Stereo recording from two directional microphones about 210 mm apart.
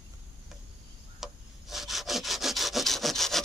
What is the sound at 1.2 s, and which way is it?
Wood, centre (ahead or behind).